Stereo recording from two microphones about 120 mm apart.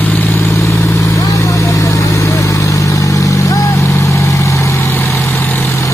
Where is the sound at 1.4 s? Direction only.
25° left (ahead or behind).